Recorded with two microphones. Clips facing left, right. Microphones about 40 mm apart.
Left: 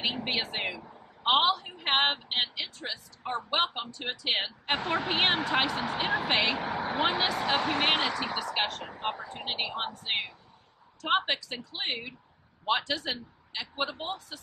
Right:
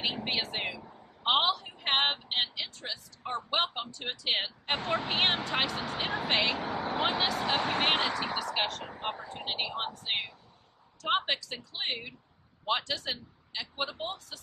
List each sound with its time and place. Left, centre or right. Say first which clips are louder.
0.0 s a man's voice: left 1 dB; centre